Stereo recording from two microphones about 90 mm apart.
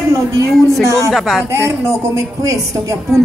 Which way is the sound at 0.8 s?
35° right (ahead or behind).